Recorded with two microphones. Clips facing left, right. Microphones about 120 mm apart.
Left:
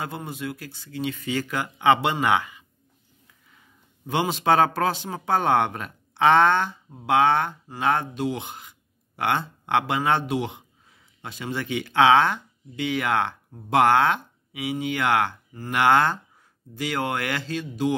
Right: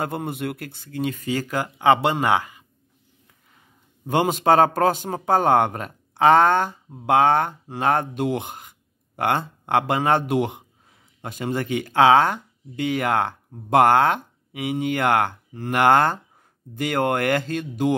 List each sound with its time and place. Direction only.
0.0 s speech: 55° right (ahead or behind); by 2.6 s 40° right (ahead or behind)
4.1 s speech: 45° right (ahead or behind)